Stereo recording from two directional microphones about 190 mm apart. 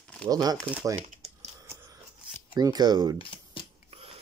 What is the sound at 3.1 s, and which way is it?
Shuffling cards, 30° left (ahead or behind).